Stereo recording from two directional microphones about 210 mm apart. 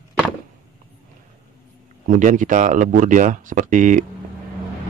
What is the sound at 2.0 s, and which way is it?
Speech, 35° right (ahead or behind).